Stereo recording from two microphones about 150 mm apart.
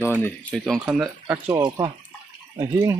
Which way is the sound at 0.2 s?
10° left (ahead or behind).